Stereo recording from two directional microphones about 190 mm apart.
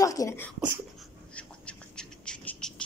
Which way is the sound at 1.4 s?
5° left (ahead or behind).